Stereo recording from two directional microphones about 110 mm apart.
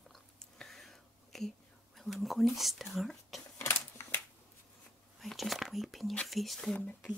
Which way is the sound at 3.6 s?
20° left (ahead or behind).